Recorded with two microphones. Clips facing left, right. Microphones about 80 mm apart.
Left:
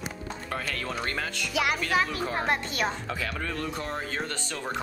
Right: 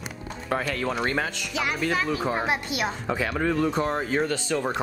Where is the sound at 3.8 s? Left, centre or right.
Right.